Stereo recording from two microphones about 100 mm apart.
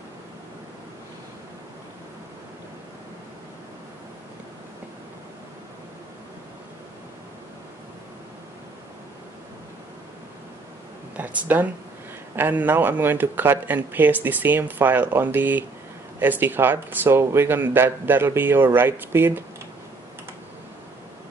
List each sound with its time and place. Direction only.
11.1 s speech: 15° right (ahead or behind)